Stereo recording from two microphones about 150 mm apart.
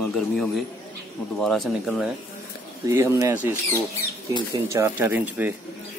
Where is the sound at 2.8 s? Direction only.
20° right (ahead or behind).